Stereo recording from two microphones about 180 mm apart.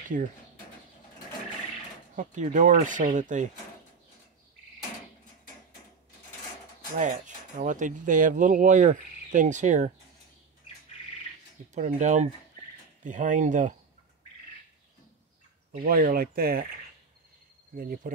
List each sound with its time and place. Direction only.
2.1 s speech: 45° right (ahead or behind)
7.0 s speech: 45° right (ahead or behind)
11.7 s speech: 45° right (ahead or behind)
15.8 s speech: 55° right (ahead or behind)
17.7 s speech: 50° right (ahead or behind)